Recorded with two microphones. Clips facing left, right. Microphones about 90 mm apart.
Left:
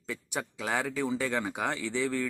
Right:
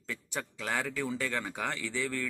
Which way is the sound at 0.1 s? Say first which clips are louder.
Left 3 dB; 15° left (ahead or behind).